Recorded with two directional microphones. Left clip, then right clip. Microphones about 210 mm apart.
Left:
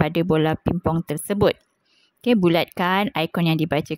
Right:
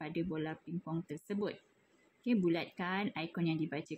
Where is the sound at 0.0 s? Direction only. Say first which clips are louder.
Left 19 dB; 55° left (ahead or behind).